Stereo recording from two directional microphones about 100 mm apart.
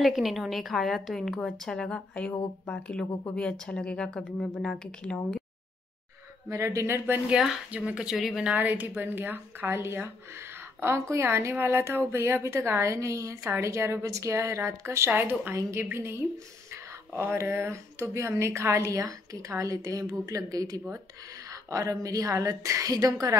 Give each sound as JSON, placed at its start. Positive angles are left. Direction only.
{"t": 0.0, "sound": "a woman's voice", "side_deg": 0}
{"t": 6.5, "sound": "a woman's voice", "side_deg": -30}
{"t": 7.7, "sound": "speech", "side_deg": -15}
{"t": 8.5, "sound": "a woman's voice", "side_deg": -15}